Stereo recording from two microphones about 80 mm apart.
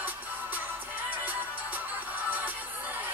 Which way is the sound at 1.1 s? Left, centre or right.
Right.